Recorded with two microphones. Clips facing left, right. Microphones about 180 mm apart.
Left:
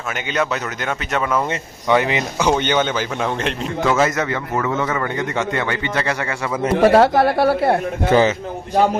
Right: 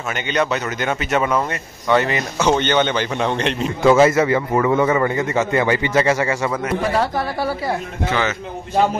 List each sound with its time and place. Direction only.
0.3 s speech: centre (ahead or behind)
1.9 s a man's voice: 15° left (ahead or behind)
3.8 s a man's voice: 10° right (ahead or behind)
6.8 s a man's voice: 70° left (ahead or behind)